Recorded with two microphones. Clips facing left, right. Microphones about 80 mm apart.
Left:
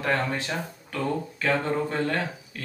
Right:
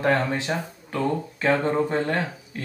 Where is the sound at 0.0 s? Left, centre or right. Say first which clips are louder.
Right 4 dB; right.